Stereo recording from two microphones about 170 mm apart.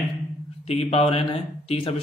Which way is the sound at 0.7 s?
35° left (ahead or behind).